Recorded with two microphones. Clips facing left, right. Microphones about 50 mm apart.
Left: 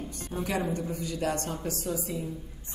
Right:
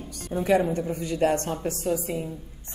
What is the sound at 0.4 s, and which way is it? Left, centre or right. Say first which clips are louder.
A woman's voice: right 8 dB; right.